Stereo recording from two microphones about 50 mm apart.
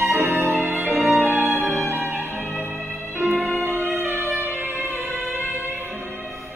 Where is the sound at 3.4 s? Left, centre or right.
Left.